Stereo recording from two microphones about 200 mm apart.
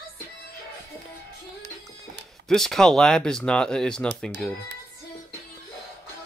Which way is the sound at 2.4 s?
Centre (ahead or behind).